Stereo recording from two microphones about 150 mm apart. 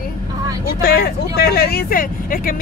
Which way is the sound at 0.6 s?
90° left.